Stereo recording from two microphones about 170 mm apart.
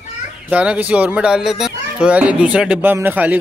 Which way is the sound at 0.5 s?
10° right (ahead or behind).